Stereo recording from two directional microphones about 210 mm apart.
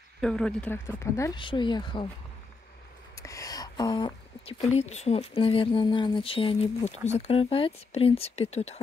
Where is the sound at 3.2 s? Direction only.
15° left (ahead or behind).